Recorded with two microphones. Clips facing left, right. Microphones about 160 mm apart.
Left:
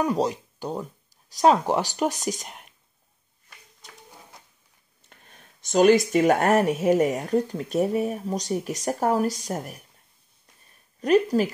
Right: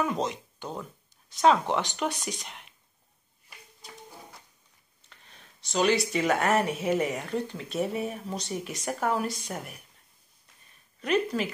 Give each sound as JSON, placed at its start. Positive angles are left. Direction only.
{"t": 0.0, "sound": "speech", "side_deg": 35}
{"t": 5.1, "sound": "speech", "side_deg": 50}
{"t": 11.0, "sound": "speech", "side_deg": 40}